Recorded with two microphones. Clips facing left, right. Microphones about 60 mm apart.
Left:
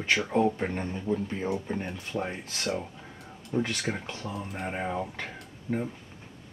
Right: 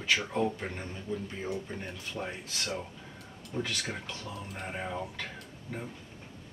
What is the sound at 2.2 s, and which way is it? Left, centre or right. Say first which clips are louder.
Speech: left 2 dB; left.